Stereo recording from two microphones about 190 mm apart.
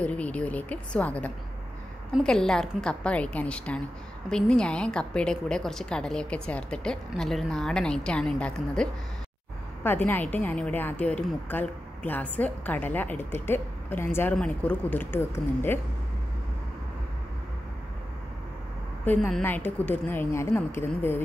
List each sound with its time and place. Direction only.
0.0 s a woman's voice: 5° left (ahead or behind)
9.8 s a woman's voice: 10° left (ahead or behind)
19.0 s a woman's voice: 5° left (ahead or behind)